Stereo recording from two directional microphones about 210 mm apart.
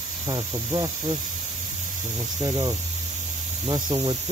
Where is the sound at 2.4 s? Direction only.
20° right (ahead or behind).